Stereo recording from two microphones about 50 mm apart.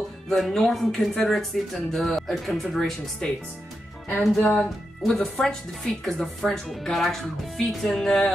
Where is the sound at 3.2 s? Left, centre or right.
Left.